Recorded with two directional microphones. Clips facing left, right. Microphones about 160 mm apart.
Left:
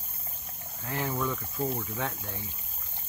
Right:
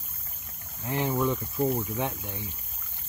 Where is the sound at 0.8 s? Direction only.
20° right (ahead or behind).